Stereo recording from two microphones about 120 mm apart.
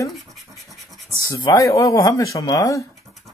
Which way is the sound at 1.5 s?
25° left (ahead or behind).